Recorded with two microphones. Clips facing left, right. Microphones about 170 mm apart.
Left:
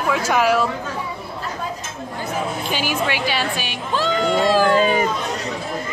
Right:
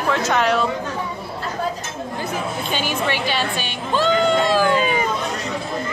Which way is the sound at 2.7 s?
5° left (ahead or behind).